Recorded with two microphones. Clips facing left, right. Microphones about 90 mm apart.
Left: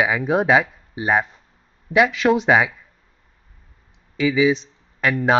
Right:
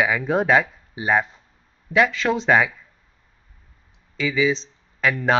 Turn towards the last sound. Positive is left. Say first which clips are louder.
# left 1 dB
turn(degrees=5)  # may be behind; listen again after turning